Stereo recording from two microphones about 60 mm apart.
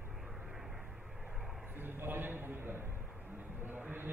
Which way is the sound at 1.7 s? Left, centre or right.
Right.